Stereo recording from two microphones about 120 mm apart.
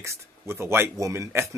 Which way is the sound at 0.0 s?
25° right (ahead or behind).